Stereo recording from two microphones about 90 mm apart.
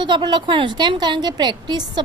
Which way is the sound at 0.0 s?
60° right (ahead or behind).